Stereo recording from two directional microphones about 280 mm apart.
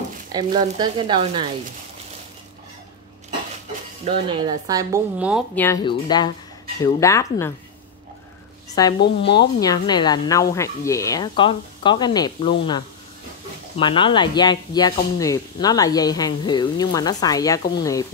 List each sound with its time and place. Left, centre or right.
0.3 s speech: centre
4.0 s speech: centre
5.6 s speech: centre
9.0 s speech: left
9.4 s speech: centre
13.7 s speech: centre